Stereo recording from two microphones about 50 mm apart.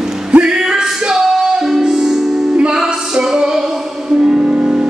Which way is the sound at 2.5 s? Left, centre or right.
Right.